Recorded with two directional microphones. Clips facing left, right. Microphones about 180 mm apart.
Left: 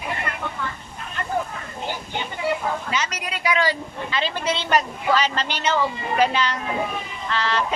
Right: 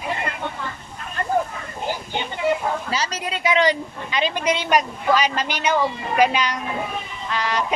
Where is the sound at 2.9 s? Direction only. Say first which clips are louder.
Right 2 dB; 30° right (ahead or behind).